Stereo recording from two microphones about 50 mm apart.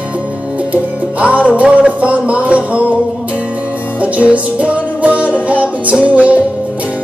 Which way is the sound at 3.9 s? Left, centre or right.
Right.